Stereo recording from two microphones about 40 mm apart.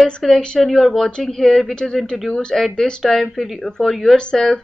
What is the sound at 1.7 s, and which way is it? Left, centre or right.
Speech, centre.